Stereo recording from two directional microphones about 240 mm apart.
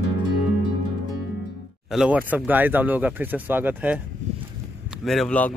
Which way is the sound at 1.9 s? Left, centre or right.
Centre.